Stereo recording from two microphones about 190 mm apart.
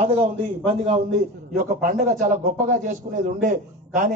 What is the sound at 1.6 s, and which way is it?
A man's voice, 45° right (ahead or behind).